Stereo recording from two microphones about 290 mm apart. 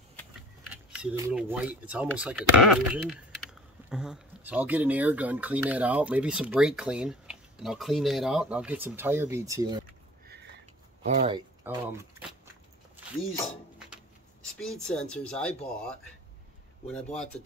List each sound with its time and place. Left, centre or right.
0.9 s speech: centre
10.2 s a sound: right
11.1 s speech: centre
11.6 s speech: centre
14.6 s speech: centre